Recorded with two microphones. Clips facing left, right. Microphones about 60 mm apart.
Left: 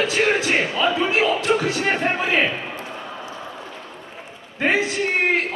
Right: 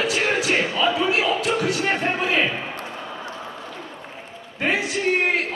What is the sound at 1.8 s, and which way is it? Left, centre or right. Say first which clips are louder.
Speech: left 1 dB; centre.